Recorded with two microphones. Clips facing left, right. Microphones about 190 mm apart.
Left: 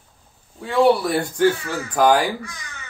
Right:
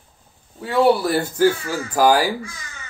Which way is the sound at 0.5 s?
Centre (ahead or behind).